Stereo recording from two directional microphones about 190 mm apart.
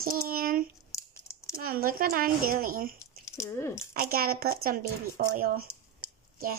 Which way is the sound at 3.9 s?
50° right (ahead or behind).